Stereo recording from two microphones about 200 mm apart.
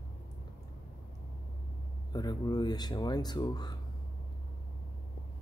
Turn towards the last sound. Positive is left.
turn(degrees=20)  # may be behind; listen again after turning